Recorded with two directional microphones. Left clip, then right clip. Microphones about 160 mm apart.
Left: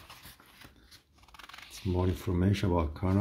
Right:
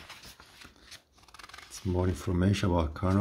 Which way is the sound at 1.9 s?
10° right (ahead or behind).